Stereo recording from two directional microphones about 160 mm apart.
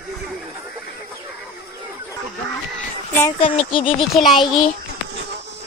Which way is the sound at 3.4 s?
35° left (ahead or behind).